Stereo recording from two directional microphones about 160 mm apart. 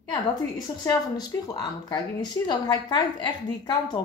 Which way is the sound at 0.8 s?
20° left (ahead or behind).